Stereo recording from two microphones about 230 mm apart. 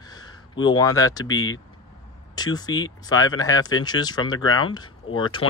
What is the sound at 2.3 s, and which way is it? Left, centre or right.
Speech, centre.